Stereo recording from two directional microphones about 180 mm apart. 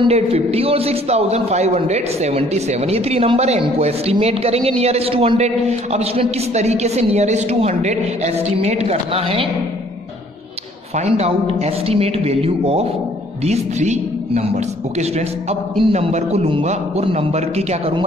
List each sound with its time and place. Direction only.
0.0 s a man's voice: 35° right (ahead or behind)
11.0 s a man's voice: 35° right (ahead or behind)